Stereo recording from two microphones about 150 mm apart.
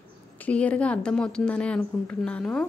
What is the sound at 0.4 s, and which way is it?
A woman's voice, 10° left (ahead or behind).